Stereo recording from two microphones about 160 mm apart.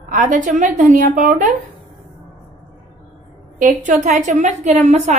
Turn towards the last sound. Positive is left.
turn(degrees=-45)  # may be behind; listen again after turning